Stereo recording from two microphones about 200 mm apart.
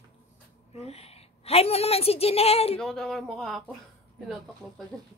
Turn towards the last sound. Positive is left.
turn(degrees=0)  # may be behind; listen again after turning